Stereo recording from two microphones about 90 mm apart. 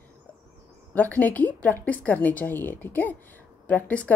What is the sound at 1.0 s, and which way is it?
A woman's voice, 20° left (ahead or behind).